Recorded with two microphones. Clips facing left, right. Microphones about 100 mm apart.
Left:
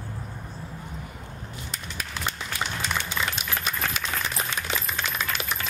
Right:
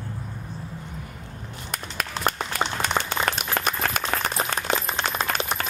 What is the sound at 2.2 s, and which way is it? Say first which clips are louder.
Applause: right 6 dB; 50° right (ahead or behind).